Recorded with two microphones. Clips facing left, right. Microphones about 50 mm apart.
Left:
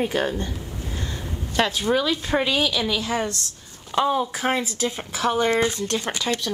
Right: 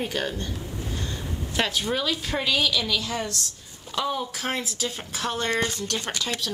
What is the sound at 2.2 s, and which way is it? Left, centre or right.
A woman's voice, left.